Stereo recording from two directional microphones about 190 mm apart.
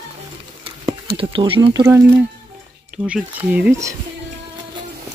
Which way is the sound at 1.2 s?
30° right (ahead or behind).